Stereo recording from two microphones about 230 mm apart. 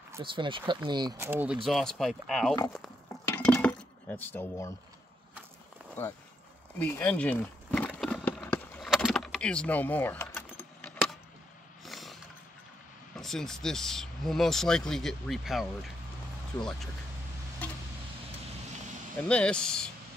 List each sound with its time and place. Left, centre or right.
0.1 s speech: right; by 2.5 s centre
3.3 s glass: centre
6.8 s a sound: centre
13.1 s speech: centre
17.6 s vehicle: centre
19.2 s speech: centre